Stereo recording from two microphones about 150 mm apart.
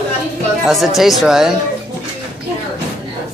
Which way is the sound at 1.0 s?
Centre (ahead or behind).